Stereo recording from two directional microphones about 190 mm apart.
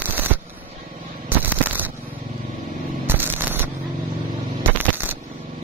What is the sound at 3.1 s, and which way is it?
Shuffling cards, 10° right (ahead or behind).